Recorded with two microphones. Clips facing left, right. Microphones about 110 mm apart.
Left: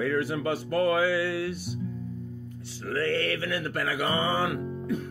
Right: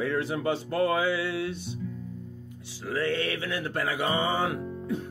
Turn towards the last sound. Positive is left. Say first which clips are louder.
# left 1 dB
turn(degrees=-25)  # may be behind; listen again after turning